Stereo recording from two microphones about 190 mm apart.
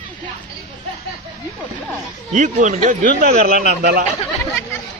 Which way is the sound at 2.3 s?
40° right (ahead or behind).